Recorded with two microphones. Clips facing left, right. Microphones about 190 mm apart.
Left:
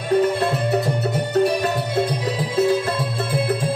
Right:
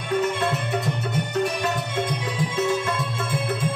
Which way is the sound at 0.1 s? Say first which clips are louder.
Left 5 dB; 35° left (ahead or behind).